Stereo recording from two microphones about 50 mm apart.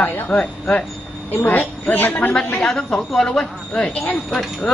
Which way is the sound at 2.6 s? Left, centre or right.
Centre.